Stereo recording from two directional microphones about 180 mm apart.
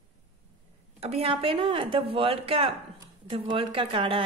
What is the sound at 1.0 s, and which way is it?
A woman's voice, 35° right (ahead or behind).